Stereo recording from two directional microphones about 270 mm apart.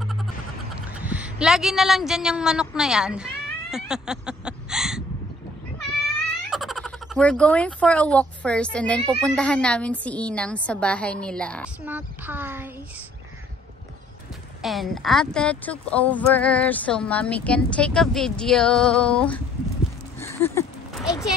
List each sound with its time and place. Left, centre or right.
1.0 s a woman's voice: centre
3.7 s a sound: centre
6.5 s speech: centre
11.8 s speech: centre
14.6 s speech: centre
20.2 s a sound: centre